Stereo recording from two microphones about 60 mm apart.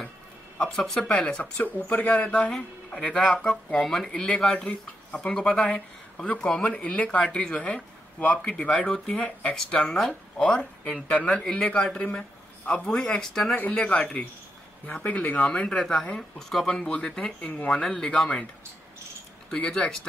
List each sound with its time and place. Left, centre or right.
0.7 s speech: centre
1.0 s speech: centre
2.3 s a man's voice: centre
4.6 s speech: left
5.3 s a man's voice: centre
8.6 s a man's voice: centre
9.1 s speech: left
9.5 s a man's voice: centre
10.4 s a man's voice: left
13.6 s a man's voice: left; by 16.9 s centre
16.9 s speech: centre
17.8 s a man's voice: centre
19.5 s a man's voice: centre